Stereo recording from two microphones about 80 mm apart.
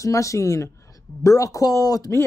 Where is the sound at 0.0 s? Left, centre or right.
Left.